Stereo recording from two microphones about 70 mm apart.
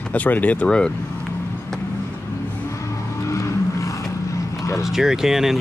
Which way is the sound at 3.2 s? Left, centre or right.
Left.